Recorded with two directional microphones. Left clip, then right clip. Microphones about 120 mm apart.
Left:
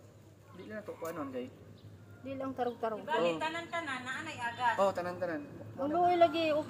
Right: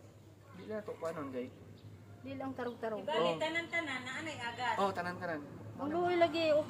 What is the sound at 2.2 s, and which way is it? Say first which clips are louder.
Speech: left 4 dB; 25° left (ahead or behind).